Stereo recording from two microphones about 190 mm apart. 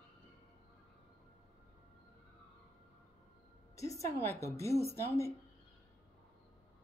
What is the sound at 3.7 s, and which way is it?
Music, 15° left (ahead or behind).